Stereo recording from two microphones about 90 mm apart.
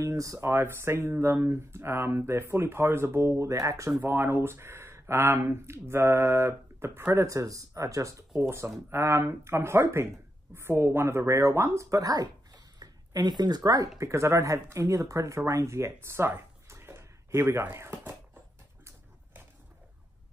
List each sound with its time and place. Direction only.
0.0 s speech: 35° right (ahead or behind)
13.9 s speech: 30° right (ahead or behind)